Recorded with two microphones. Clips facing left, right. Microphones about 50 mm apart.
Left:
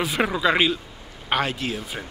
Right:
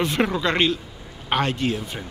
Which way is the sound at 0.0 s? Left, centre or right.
Centre.